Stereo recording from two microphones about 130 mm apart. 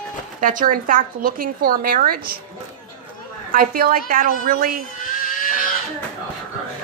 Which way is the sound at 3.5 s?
90° right.